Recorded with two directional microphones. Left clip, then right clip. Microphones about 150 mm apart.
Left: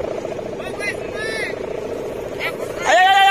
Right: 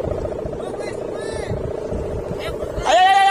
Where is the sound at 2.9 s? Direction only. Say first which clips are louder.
Left 1 dB; 20° right (ahead or behind).